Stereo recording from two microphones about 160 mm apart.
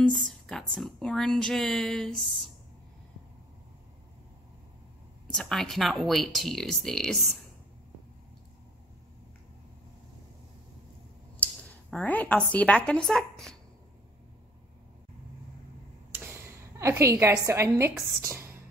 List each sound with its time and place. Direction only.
0.0 s speech: 5° left (ahead or behind)
5.3 s speech: centre (ahead or behind)
11.3 s speech: 5° left (ahead or behind)
16.3 s a woman's voice: 15° right (ahead or behind)
18.2 s whispering: 15° right (ahead or behind)